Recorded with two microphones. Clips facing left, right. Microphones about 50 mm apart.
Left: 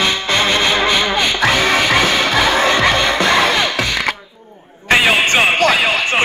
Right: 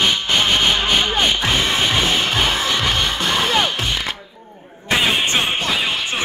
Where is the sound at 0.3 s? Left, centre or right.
Left.